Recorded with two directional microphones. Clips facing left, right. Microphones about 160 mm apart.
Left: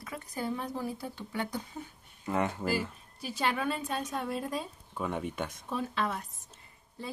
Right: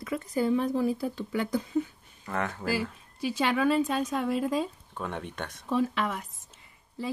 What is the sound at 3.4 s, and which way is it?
Speech, 90° right.